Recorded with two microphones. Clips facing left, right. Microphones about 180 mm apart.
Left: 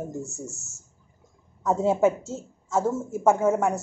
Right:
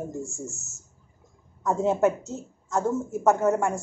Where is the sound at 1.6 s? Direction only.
5° left (ahead or behind).